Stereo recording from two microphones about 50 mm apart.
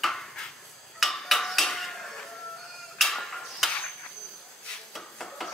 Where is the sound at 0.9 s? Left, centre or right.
Centre.